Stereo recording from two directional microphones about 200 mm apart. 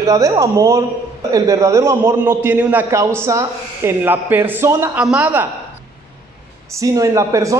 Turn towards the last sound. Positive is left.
turn(degrees=-15)  # may be behind; listen again after turning